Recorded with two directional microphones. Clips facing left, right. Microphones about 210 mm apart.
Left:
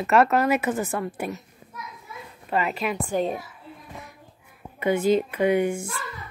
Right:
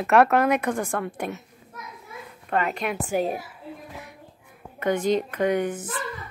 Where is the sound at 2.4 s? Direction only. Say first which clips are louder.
Even; 5° left (ahead or behind).